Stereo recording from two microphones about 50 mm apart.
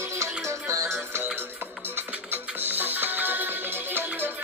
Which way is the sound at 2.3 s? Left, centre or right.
Right.